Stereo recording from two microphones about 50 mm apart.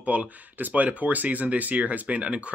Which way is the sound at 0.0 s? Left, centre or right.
Right.